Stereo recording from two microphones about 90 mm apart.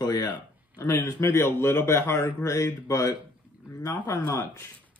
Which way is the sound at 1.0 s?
30° left (ahead or behind).